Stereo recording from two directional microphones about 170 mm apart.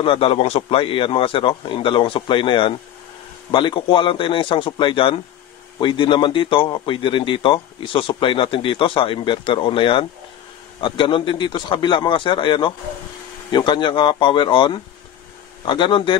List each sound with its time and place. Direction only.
0.0 s a man's voice: 30° left (ahead or behind)